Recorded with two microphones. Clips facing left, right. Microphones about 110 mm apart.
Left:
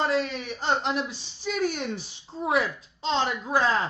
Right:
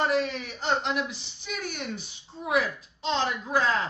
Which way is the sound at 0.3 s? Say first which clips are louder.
Left 1 dB; 35° left (ahead or behind).